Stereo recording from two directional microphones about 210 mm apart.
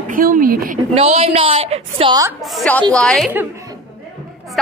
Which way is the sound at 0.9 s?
30° right (ahead or behind).